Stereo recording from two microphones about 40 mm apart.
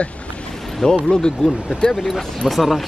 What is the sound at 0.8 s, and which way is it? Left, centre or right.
Speech, centre.